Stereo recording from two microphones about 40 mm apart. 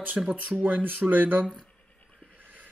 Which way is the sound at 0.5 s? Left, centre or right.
Right.